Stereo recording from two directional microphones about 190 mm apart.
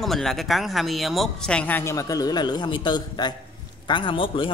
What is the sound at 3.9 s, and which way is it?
Music, 25° left (ahead or behind).